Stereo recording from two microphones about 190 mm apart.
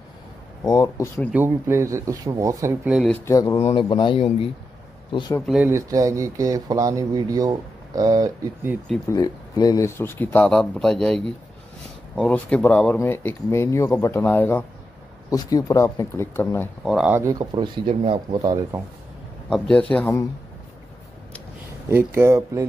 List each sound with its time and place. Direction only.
0.7 s speech: 20° left (ahead or behind)
1.3 s speech: 10° right (ahead or behind)
3.3 s speech: 15° left (ahead or behind)
3.5 s speech: 30° left (ahead or behind)
5.7 s speech: 15° right (ahead or behind)
9.1 s speech: 20° left (ahead or behind)
16.9 s speech: 5° right (ahead or behind)
17.2 s speech: 20° right (ahead or behind)
19.5 s speech: 5° left (ahead or behind)
21.8 s speech: 15° right (ahead or behind)